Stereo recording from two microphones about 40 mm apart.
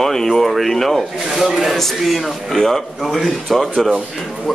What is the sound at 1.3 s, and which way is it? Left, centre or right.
A man's voice, centre.